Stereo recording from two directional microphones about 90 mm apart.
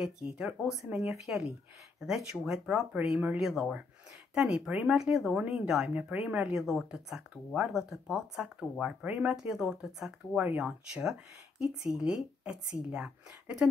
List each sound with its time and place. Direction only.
0.0 s a woman's voice: 10° right (ahead or behind)
4.6 s speech: 20° right (ahead or behind)
4.8 s a woman's voice: 5° right (ahead or behind)